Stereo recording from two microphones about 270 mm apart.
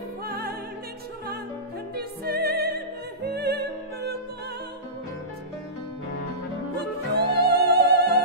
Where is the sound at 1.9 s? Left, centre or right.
Right.